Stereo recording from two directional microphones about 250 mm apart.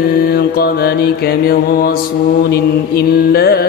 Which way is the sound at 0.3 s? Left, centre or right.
Left.